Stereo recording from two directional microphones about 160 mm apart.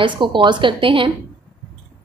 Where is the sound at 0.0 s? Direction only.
30° right (ahead or behind).